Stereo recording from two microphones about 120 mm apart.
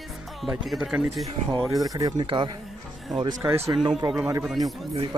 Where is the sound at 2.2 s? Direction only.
45° right (ahead or behind).